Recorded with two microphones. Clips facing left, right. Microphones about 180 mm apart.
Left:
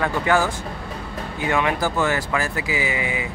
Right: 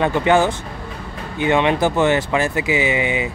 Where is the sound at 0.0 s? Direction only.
20° right (ahead or behind).